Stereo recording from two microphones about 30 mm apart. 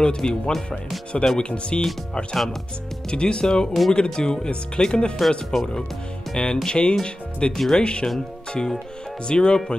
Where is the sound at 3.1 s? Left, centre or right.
Left.